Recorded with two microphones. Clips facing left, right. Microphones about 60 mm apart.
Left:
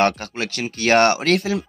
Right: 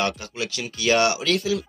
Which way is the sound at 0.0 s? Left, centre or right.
Left.